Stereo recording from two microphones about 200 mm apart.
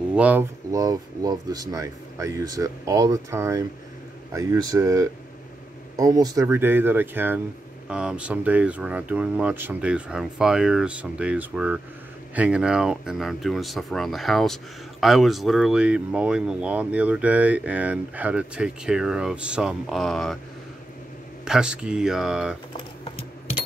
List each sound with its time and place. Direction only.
0.1 s speech: 5° right (ahead or behind)
21.5 s speech: 5° right (ahead or behind)